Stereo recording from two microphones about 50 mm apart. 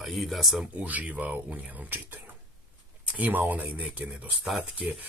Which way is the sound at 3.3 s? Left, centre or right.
Right.